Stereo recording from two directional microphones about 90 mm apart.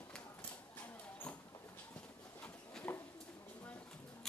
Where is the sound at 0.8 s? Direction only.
20° left (ahead or behind).